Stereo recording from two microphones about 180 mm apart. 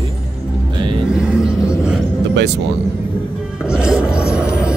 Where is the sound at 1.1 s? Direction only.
5° right (ahead or behind).